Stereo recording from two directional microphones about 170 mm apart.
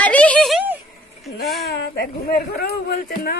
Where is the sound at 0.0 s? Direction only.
10° left (ahead or behind).